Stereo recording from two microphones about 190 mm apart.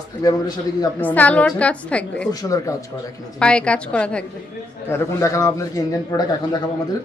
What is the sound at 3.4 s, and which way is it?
A woman's voice, 5° left (ahead or behind).